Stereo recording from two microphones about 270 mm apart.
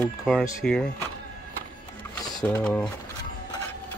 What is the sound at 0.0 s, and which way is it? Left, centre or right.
Speech, centre.